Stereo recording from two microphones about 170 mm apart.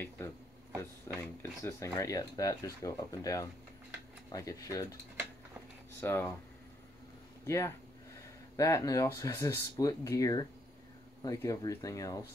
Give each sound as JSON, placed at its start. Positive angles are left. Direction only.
{"t": 0.2, "sound": "speech", "side_deg": 15}
{"t": 5.9, "sound": "speech", "side_deg": 15}
{"t": 7.4, "sound": "speech", "side_deg": 15}